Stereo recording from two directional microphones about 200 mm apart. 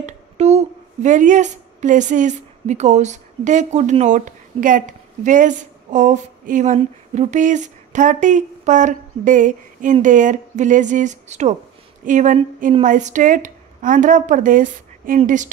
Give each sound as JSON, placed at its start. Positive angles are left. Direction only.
{"t": 0.0, "sound": "a woman's voice", "side_deg": -35}